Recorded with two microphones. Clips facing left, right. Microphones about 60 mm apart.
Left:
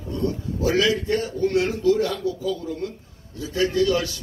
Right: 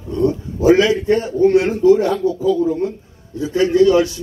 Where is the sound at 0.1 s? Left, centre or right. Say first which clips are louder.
Right 8 dB; right.